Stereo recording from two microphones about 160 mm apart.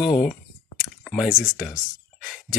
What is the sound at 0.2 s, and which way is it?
Clicking, centre (ahead or behind).